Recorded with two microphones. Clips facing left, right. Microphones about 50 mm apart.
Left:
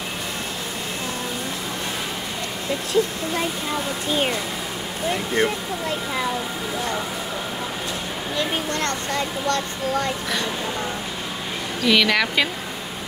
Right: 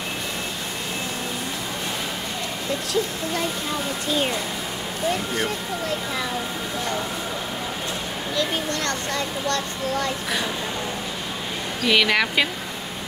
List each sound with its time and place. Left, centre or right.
8.4 s speech: left
11.8 s speech: centre